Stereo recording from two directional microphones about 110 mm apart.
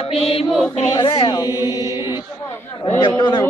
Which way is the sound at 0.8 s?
40° left (ahead or behind).